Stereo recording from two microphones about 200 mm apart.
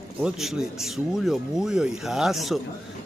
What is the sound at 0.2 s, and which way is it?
Speech, centre (ahead or behind).